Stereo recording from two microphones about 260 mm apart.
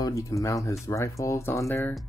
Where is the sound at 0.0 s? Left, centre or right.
Centre.